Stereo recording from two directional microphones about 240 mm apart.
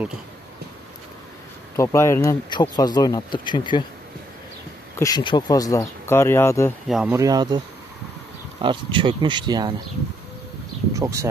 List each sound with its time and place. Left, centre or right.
1.8 s speech: centre
4.9 s speech: centre
6.9 s speech: centre
7.2 s speech: centre
10.9 s speech: centre